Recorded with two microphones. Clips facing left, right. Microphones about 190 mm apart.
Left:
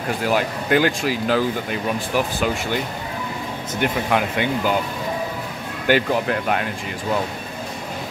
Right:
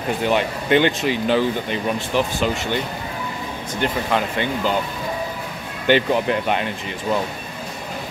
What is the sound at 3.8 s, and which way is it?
Speech, 10° left (ahead or behind).